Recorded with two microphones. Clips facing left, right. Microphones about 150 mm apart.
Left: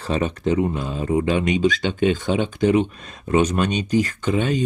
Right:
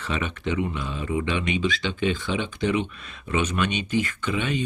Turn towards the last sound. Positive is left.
turn(degrees=40)  # may be behind; listen again after turning